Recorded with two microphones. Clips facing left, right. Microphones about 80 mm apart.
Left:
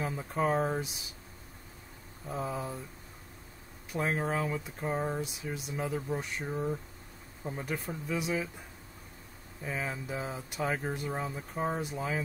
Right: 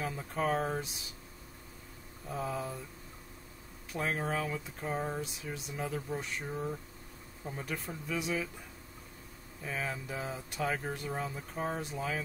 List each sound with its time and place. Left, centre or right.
0.0 s speech: centre
2.2 s speech: centre
3.9 s speech: centre
9.6 s speech: centre